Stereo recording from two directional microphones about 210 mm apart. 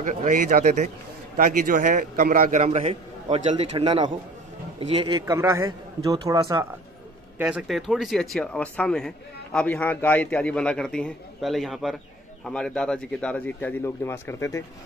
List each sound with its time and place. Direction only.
0.0 s a man's voice: 40° right (ahead or behind); by 6.6 s 15° right (ahead or behind)
7.3 s a man's voice: 5° right (ahead or behind); by 14.6 s 10° left (ahead or behind)